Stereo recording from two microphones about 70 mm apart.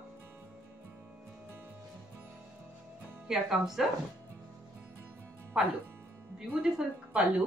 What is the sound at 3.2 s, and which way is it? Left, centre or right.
Speech, centre.